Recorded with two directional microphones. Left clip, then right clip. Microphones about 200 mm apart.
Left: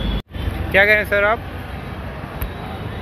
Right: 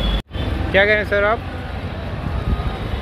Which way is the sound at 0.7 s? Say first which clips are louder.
Left 1 dB; 25° right (ahead or behind).